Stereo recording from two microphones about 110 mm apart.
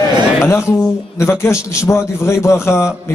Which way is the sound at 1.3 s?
25° left (ahead or behind).